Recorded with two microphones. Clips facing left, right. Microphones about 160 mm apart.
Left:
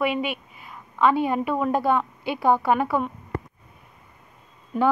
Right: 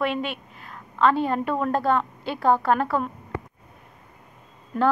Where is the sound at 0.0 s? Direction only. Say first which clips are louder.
Left 1 dB; 10° left (ahead or behind).